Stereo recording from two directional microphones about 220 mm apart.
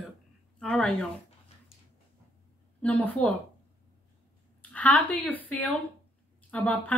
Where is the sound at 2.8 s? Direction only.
5° left (ahead or behind).